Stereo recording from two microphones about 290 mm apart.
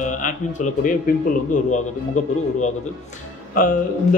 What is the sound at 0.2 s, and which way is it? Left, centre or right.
A man's voice, left.